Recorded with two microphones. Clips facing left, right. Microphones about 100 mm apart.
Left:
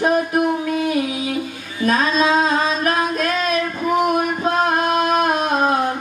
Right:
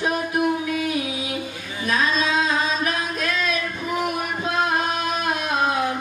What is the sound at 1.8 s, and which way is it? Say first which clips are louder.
Music: left 5 dB; 45° left (ahead or behind).